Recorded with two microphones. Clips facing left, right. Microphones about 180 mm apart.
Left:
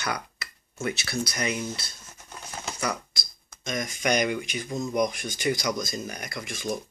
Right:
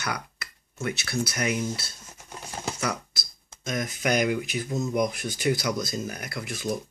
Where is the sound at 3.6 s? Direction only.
5° right (ahead or behind).